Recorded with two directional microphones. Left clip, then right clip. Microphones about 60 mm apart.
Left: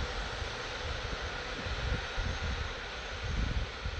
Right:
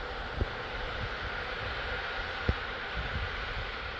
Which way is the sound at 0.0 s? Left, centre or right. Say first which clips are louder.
Right 1 dB; left.